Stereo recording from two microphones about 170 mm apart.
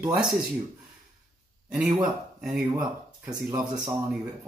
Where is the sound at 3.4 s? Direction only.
20° right (ahead or behind).